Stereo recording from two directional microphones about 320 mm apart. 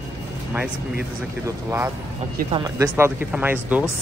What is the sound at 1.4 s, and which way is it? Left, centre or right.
Speech, centre.